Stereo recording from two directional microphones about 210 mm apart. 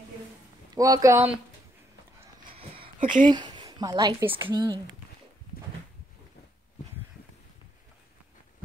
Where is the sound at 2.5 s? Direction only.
25° right (ahead or behind).